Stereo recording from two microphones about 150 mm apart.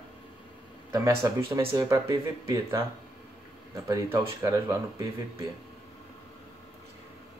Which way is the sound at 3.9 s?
20° right (ahead or behind).